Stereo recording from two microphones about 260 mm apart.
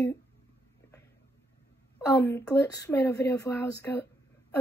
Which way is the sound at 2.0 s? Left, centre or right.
Centre.